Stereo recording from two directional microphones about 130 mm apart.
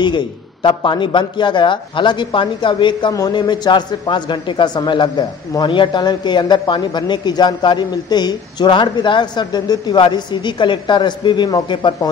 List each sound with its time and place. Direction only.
0.0 s speech: 35° left (ahead or behind)